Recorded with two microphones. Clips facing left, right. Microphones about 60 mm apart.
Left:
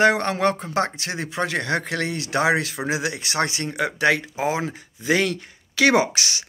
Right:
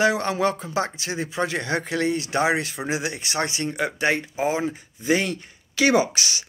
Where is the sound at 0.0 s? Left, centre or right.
Left.